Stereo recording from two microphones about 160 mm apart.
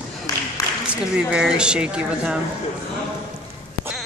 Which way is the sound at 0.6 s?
20° left (ahead or behind).